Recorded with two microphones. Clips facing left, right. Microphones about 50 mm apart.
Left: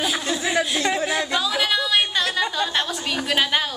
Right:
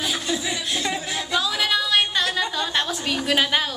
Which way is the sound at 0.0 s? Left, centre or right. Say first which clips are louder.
Left 2 dB; centre.